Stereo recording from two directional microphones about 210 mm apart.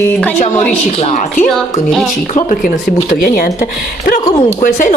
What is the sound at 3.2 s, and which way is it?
Speech, 45° left (ahead or behind).